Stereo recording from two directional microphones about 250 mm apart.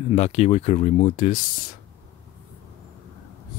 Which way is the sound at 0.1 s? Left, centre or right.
Left.